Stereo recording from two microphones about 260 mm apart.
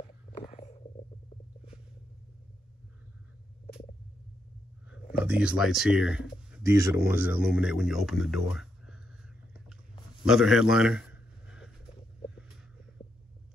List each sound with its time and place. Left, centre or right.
0.0 s stomach rumble: left
5.1 s speech: centre
10.2 s a sound: centre